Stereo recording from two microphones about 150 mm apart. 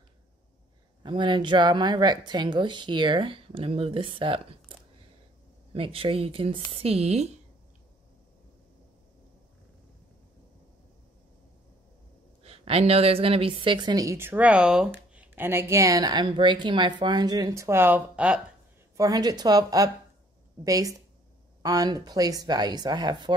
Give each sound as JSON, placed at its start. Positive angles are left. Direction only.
{"t": 1.0, "sound": "speech", "side_deg": -30}
{"t": 5.8, "sound": "speech", "side_deg": -40}
{"t": 12.4, "sound": "speech", "side_deg": -40}
{"t": 18.9, "sound": "speech", "side_deg": -25}